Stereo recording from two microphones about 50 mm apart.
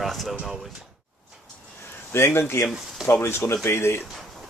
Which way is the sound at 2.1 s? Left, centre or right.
Left.